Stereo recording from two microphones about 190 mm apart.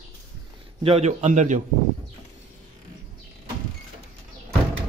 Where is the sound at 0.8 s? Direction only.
35° right (ahead or behind).